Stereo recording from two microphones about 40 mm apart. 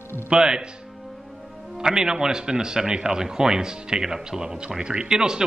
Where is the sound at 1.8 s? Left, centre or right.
Centre.